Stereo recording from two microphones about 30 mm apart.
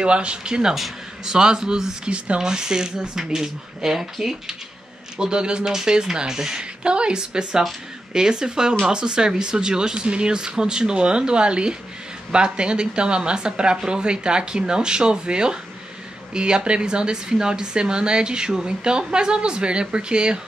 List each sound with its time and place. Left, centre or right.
0.0 s speech: right
0.7 s a man's voice: centre
1.3 s speech: right
2.0 s speech: right
2.4 s speech: right
5.1 s speech: right
6.6 s speech: right